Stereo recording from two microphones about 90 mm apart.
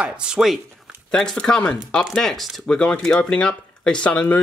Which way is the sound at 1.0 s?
10° left (ahead or behind).